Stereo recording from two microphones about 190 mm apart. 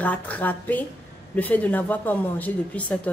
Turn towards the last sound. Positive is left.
turn(degrees=10)  # may be behind; listen again after turning